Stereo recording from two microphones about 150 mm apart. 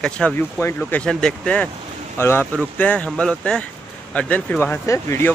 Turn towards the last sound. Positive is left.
turn(degrees=20)  # may be behind; listen again after turning